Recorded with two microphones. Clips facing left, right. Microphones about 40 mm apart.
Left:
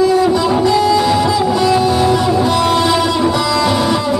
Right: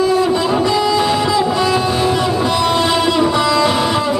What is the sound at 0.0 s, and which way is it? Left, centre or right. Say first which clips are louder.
Music: left 2 dB; centre.